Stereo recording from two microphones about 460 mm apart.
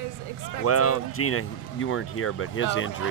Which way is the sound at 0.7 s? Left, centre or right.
Left.